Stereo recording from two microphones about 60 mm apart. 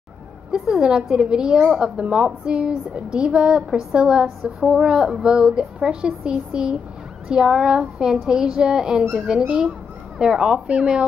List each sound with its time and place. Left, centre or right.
0.5 s a woman's voice: centre